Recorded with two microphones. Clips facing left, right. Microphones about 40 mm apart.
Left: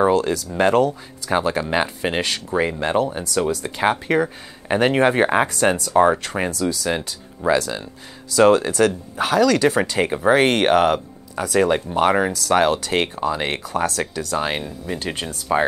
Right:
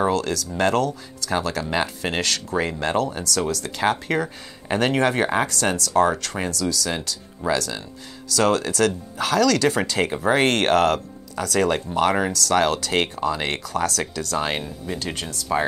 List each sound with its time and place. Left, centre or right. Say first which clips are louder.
0.0 s speech: left 4 dB; centre
15.0 s speech: left 4 dB; centre